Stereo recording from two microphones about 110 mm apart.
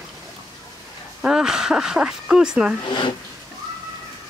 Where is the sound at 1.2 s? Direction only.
5° right (ahead or behind).